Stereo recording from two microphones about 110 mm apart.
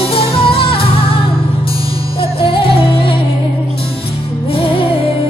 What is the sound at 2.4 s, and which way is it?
Music, 55° left (ahead or behind).